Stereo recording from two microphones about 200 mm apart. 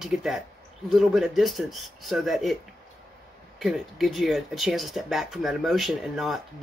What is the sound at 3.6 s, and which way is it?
Speech, centre (ahead or behind).